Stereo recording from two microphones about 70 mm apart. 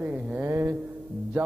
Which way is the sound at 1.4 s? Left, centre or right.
Right.